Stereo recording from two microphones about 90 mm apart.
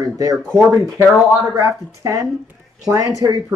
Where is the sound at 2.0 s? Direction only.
40° right (ahead or behind).